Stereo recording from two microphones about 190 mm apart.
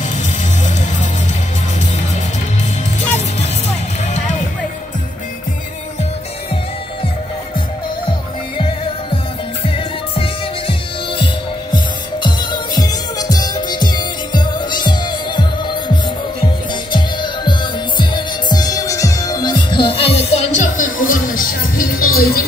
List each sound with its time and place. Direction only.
3.0 s music: 35° left (ahead or behind)
8.5 s music: 25° left (ahead or behind)
16.9 s music: 25° left (ahead or behind); by 22.4 s 50° left (ahead or behind)